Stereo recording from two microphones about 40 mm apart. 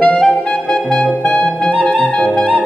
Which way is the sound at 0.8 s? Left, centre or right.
Centre.